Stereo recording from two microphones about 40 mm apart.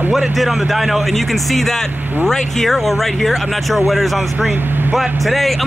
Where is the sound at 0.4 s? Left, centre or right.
Centre.